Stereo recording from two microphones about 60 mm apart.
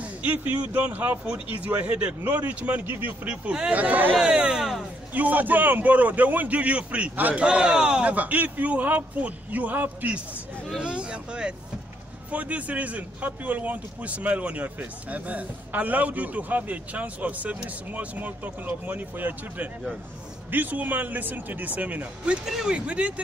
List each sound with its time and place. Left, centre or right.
0.0 s speech: right
3.3 s speech: centre
4.1 s speech: centre
5.1 s speech: right
7.4 s speech: centre
22.4 s speech: centre
22.7 s speech: centre